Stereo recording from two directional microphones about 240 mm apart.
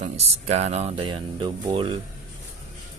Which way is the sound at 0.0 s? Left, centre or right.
Right.